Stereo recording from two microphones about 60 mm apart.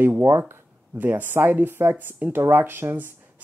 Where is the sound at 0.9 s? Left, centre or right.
Right.